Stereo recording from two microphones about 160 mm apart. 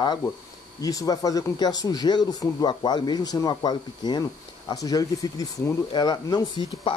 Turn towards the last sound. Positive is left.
turn(degrees=25)  # may be behind; listen again after turning